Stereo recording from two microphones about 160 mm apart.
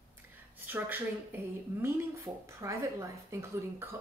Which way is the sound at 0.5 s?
10° right (ahead or behind).